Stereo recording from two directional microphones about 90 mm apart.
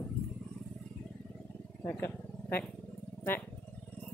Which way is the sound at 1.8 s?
25° left (ahead or behind).